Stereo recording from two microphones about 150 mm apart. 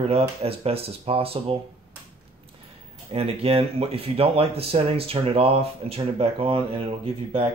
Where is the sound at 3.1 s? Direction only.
40° right (ahead or behind).